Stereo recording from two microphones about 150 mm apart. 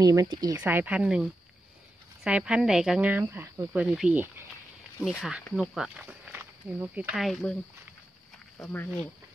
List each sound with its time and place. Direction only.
0.0 s speech: 20° right (ahead or behind)
0.6 s speech: 10° right (ahead or behind)
7.2 s speech: centre (ahead or behind)
8.5 s speech: 15° left (ahead or behind)